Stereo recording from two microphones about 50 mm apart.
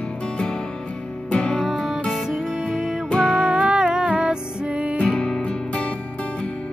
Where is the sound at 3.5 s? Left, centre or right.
Right.